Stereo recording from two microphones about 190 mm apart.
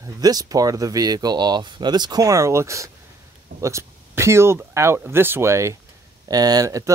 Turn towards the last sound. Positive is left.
turn(degrees=-15)  # may be behind; listen again after turning